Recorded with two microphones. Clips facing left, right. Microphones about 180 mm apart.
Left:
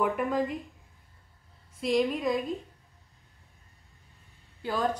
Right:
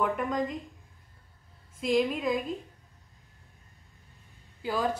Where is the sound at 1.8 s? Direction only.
Centre (ahead or behind).